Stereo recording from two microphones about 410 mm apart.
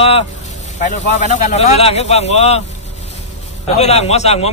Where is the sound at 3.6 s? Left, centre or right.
Centre.